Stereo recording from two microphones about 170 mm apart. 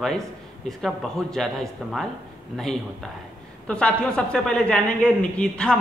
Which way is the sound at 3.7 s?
5° left (ahead or behind).